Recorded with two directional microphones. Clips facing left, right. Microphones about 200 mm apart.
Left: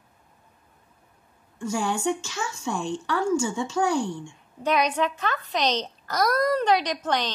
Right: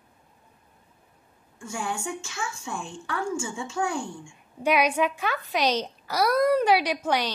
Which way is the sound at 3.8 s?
35° left (ahead or behind).